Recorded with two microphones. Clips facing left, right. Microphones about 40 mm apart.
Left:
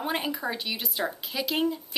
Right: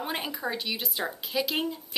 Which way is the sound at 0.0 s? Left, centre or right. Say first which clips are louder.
Left 3 dB; centre.